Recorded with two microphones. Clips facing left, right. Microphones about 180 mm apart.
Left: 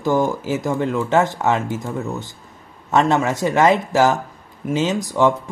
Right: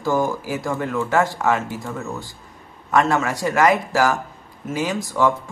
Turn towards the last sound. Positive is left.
turn(degrees=20)  # may be behind; listen again after turning